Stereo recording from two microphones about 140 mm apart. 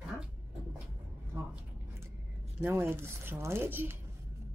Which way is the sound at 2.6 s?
15° right (ahead or behind).